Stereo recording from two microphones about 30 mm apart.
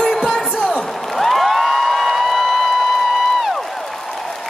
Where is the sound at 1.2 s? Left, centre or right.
Centre.